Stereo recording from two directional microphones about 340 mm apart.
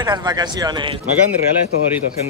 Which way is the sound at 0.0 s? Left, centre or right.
Centre.